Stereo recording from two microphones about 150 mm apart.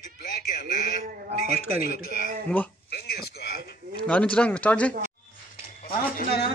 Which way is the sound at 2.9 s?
90° left.